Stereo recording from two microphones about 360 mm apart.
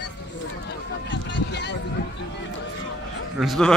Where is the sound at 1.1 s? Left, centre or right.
Left.